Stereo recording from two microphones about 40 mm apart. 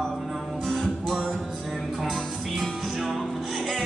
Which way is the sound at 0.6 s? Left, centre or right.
Centre.